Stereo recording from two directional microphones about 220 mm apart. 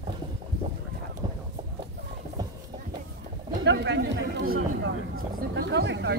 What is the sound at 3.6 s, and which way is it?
Speech, 55° right (ahead or behind).